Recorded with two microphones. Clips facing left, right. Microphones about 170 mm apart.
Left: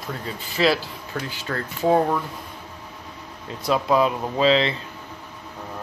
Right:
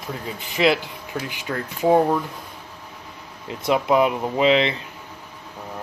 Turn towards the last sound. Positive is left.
turn(degrees=-20)  # may be behind; listen again after turning